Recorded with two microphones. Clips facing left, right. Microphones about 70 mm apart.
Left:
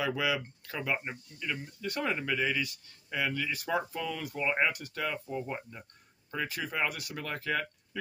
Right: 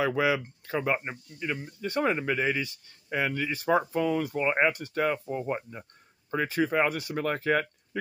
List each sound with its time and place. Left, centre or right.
0.0 s speech: right